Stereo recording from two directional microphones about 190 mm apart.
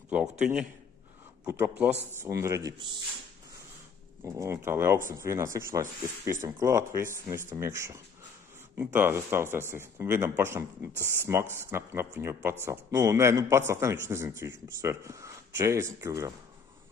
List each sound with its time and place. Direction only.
0.1 s a man's voice: 5° right (ahead or behind); by 3.0 s 20° right (ahead or behind)
4.2 s speech: 15° right (ahead or behind)